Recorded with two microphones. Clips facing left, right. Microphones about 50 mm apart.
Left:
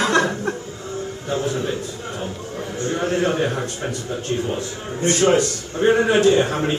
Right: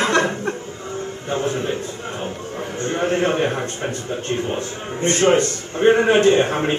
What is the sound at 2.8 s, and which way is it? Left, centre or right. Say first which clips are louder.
A man's voice: right 1 dB; right.